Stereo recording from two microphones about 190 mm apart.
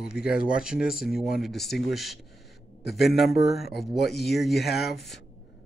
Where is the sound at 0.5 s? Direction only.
5° right (ahead or behind).